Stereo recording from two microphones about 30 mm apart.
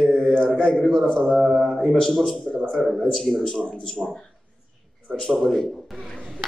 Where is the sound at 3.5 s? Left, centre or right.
Left.